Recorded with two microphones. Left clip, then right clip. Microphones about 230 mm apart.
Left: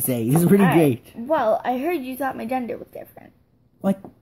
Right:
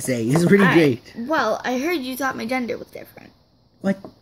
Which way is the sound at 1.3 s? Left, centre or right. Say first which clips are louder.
Left 1 dB; right.